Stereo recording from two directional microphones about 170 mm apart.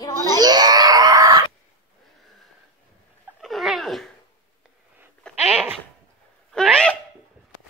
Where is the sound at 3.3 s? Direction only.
Centre (ahead or behind).